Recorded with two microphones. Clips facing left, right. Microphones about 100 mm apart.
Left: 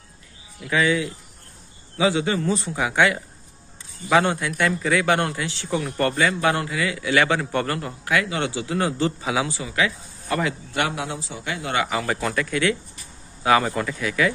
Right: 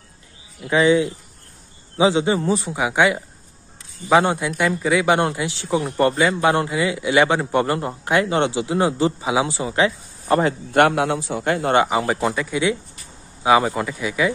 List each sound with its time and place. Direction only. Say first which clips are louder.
0.7 s speech: right 5 dB; 25° right (ahead or behind)
4.3 s a man's voice: right 2 dB; 20° right (ahead or behind)
10.7 s a man's voice: right 9 dB; 60° right (ahead or behind)
11.7 s speech: right 4 dB; 30° right (ahead or behind)